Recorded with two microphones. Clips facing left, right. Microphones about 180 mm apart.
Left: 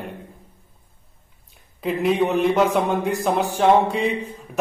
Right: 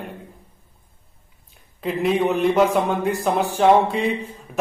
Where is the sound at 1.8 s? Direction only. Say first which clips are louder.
Even; centre (ahead or behind).